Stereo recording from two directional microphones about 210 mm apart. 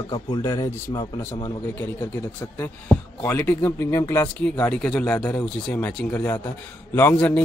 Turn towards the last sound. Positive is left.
turn(degrees=5)  # may be behind; listen again after turning